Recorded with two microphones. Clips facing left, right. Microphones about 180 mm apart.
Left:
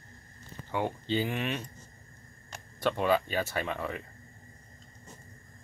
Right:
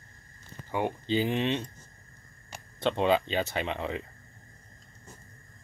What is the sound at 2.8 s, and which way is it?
Speech, 25° right (ahead or behind).